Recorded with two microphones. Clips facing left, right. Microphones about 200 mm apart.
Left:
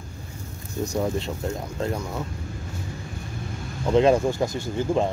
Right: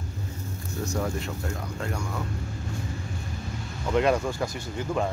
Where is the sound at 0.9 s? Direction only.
20° left (ahead or behind).